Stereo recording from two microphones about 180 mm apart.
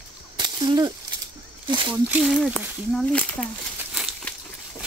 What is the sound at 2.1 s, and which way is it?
Speech, centre (ahead or behind).